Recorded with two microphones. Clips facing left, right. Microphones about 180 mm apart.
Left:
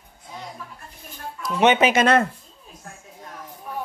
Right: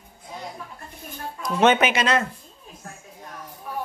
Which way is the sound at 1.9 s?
55° left (ahead or behind).